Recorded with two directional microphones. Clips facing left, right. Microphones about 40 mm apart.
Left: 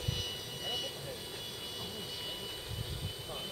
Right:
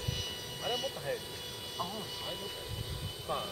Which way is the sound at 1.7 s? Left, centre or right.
Centre.